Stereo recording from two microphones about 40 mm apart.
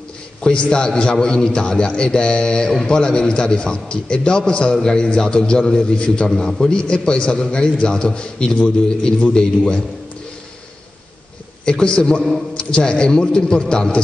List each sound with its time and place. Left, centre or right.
0.4 s a man's voice: left; by 3.0 s centre
3.0 s a man's voice: left
11.6 s a man's voice: left